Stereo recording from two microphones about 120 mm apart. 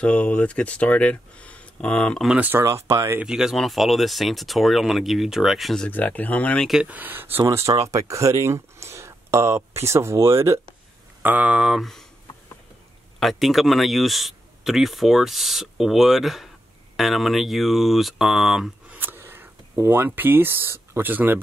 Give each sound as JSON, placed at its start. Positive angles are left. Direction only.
{"t": 0.0, "sound": "speech", "side_deg": 10}
{"t": 2.2, "sound": "speech", "side_deg": -10}
{"t": 3.2, "sound": "speech", "side_deg": -5}
{"t": 5.9, "sound": "speech", "side_deg": 15}
{"t": 6.7, "sound": "speech", "side_deg": -10}
{"t": 11.2, "sound": "speech", "side_deg": -10}
{"t": 13.2, "sound": "speech", "side_deg": 0}
{"t": 18.9, "sound": "speech", "side_deg": -20}